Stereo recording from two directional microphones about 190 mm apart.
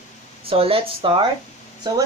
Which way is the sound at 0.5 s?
30° right (ahead or behind).